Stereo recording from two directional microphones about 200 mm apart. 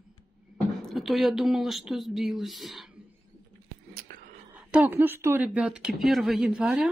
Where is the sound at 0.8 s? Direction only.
Centre (ahead or behind).